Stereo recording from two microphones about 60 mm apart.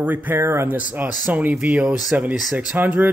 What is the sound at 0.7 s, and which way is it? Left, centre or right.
Speech, right.